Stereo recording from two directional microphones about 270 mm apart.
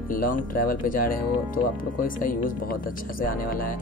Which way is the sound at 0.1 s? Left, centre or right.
Left.